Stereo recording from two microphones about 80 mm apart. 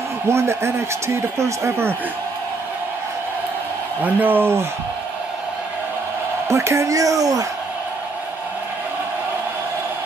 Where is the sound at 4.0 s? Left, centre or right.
Right.